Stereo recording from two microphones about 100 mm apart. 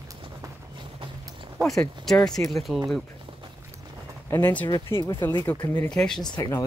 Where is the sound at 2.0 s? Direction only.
5° left (ahead or behind).